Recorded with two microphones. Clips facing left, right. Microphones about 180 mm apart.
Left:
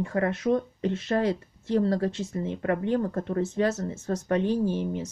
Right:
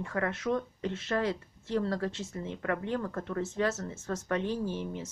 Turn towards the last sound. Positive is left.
turn(degrees=35)  # may be behind; listen again after turning